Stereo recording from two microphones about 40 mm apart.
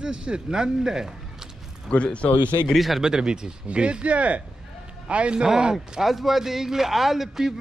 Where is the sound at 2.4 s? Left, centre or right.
Right.